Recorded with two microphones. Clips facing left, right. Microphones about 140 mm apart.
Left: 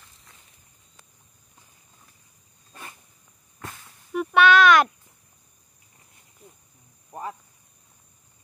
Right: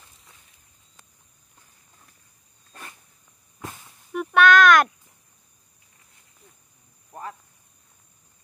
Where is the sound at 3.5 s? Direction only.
10° right (ahead or behind).